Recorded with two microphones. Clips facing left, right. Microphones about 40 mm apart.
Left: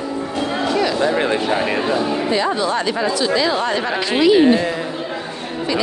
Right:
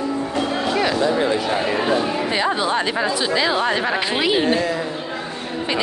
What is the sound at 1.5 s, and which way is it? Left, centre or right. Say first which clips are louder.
Speech: left 2 dB; left.